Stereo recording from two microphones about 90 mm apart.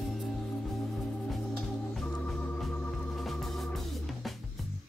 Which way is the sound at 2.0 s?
10° left (ahead or behind).